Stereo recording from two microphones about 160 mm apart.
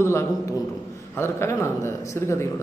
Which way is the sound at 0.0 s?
15° left (ahead or behind).